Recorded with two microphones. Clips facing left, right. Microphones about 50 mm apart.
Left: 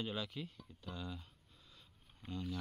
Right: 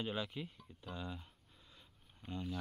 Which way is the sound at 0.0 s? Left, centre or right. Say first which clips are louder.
Right 1 dB; centre.